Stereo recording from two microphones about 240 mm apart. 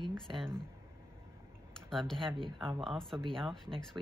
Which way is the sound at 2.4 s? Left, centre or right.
Right.